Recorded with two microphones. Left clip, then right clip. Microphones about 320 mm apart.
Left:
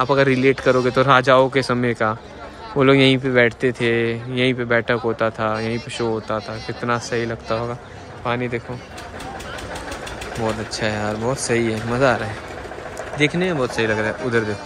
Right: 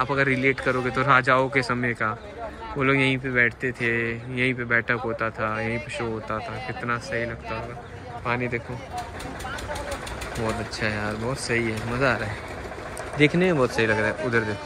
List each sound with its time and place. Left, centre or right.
0.0 s speech: centre
10.7 s speech: centre
13.2 s speech: centre